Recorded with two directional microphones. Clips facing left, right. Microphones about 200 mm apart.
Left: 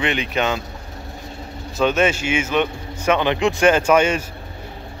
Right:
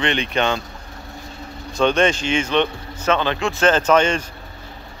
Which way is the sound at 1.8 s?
5° left (ahead or behind).